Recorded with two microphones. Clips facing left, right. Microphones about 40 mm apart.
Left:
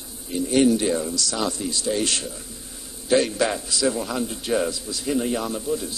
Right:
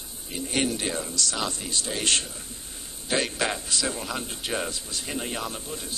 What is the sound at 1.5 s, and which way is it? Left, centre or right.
Speech, right.